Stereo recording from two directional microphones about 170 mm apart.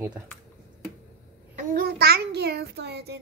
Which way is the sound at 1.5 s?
60° right (ahead or behind).